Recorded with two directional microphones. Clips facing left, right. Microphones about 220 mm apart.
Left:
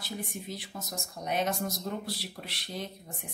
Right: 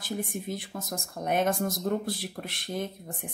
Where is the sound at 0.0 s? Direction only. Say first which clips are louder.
Right 5 dB; 50° right (ahead or behind).